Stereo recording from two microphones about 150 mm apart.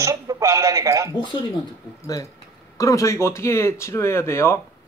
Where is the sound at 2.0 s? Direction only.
25° left (ahead or behind).